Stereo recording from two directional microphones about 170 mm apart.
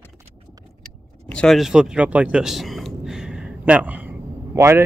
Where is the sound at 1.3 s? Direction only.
Centre (ahead or behind).